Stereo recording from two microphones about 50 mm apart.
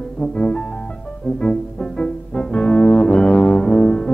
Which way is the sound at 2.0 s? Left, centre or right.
Left.